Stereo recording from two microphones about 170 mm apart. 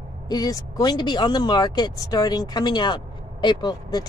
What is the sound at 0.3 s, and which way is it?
Speech, 20° left (ahead or behind).